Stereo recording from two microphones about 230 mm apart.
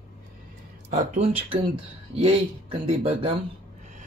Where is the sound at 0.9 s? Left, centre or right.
Right.